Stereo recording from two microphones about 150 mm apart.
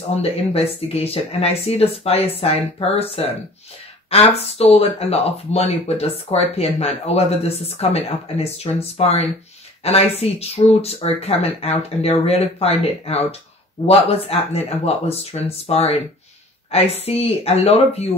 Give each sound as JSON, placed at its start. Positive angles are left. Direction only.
{"t": 0.1, "sound": "speech", "side_deg": 40}